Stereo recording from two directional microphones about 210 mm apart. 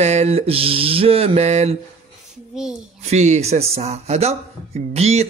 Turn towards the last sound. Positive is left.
turn(degrees=-30)  # may be behind; listen again after turning